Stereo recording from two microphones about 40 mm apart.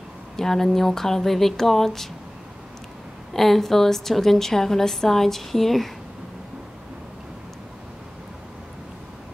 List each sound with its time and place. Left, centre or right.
0.4 s a woman's voice: centre
3.3 s a woman's voice: centre